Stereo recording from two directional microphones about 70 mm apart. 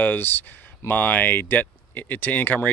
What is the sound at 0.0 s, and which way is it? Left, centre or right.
Speech, left.